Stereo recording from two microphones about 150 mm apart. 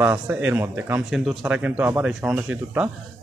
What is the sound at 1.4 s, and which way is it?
Speech, 10° right (ahead or behind).